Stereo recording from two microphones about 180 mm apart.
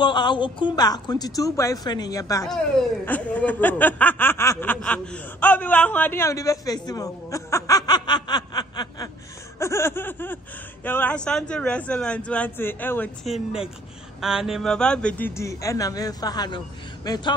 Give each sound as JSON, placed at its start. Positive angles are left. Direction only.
{"t": 0.0, "sound": "a woman's voice", "side_deg": 25}
{"t": 2.4, "sound": "speech", "side_deg": 0}